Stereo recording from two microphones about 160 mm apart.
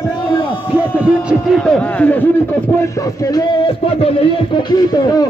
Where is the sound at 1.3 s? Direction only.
Centre (ahead or behind).